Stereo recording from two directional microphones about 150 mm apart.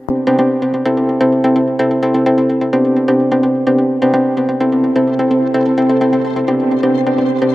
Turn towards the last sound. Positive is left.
turn(degrees=0)  # may be behind; listen again after turning